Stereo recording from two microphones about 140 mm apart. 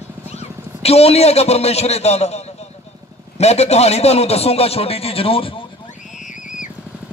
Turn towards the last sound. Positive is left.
turn(degrees=65)  # may be behind; listen again after turning